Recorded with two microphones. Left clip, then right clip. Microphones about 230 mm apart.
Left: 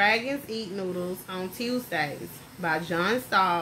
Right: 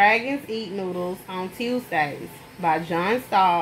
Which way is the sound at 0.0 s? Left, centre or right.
Centre.